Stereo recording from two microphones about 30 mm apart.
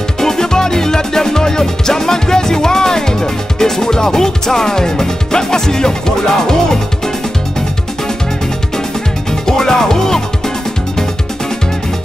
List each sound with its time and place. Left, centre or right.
0.2 s music: centre
9.5 s music: centre